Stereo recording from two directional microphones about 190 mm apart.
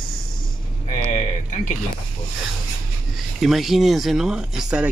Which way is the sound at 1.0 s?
40° left (ahead or behind).